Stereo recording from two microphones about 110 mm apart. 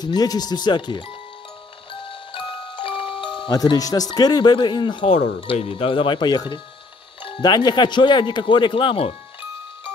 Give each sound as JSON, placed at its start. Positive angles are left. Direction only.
{"t": 0.0, "sound": "speech", "side_deg": 35}
{"t": 1.9, "sound": "glockenspiel", "side_deg": 50}
{"t": 3.5, "sound": "speech", "side_deg": 35}
{"t": 5.0, "sound": "speech", "side_deg": 60}